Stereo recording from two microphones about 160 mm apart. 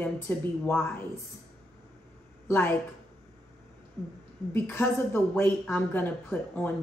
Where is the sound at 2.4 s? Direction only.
15° left (ahead or behind).